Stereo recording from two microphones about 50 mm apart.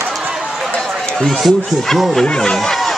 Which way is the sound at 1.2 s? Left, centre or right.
Centre.